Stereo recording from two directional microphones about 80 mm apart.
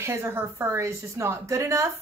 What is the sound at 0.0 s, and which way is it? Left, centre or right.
Speech, right.